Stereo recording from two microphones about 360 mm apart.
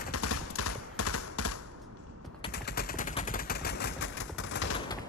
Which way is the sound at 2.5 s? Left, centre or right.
Left.